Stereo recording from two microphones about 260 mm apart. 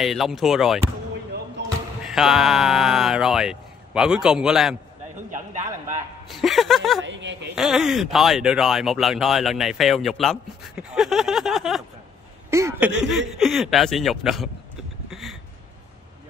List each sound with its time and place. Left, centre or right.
0.0 s speech: centre
1.6 s basketball bounce: right
2.0 s speech: centre
6.2 s speech: centre
7.0 s speech: right
7.5 s speech: centre
15.0 s a sound: centre